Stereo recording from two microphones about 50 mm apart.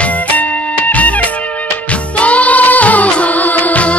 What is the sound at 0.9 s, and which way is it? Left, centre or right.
Music, left.